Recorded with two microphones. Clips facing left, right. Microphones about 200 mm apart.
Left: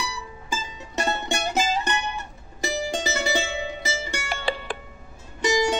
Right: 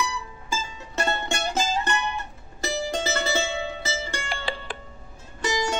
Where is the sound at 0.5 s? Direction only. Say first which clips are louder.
Right 1 dB; 10° left (ahead or behind).